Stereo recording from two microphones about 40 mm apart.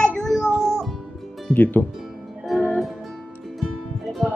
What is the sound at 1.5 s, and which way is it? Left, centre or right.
Speech, left.